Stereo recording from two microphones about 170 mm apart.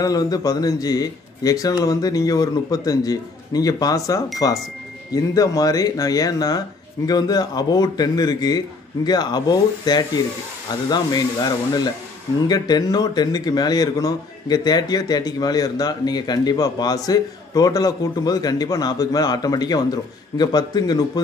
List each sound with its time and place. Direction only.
0.0 s a man's voice: 20° left (ahead or behind)